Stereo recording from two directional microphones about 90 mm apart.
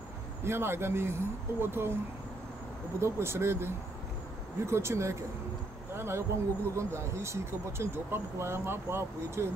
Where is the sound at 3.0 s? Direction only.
30° right (ahead or behind).